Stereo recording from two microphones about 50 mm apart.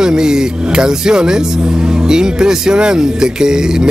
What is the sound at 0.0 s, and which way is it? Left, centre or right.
A man's voice, centre.